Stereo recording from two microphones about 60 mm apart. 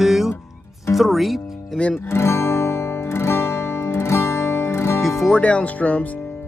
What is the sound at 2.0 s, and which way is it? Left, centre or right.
Guitar, left.